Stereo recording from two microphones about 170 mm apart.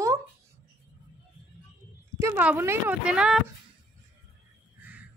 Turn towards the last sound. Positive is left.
turn(degrees=-10)  # may be behind; listen again after turning